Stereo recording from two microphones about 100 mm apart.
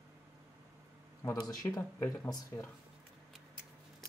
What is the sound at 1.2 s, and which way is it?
Speech, 35° left (ahead or behind).